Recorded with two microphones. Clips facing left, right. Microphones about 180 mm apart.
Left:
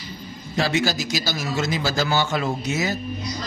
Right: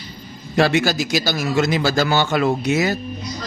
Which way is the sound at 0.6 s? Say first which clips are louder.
Right 5 dB; 60° right (ahead or behind).